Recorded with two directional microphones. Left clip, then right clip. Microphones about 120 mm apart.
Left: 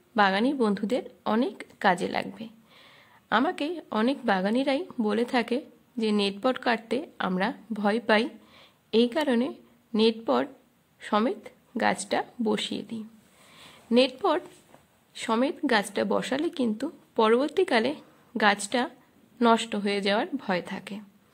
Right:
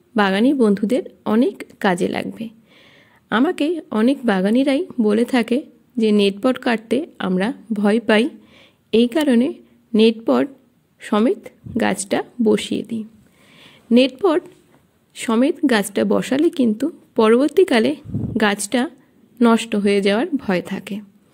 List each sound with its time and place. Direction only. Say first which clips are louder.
0.1 s a woman's voice: right 6 dB; 45° right (ahead or behind)
14.1 s a woman's voice: right 8 dB; 35° right (ahead or behind)